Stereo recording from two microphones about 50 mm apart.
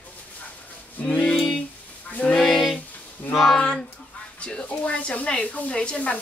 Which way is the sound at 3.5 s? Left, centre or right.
Centre.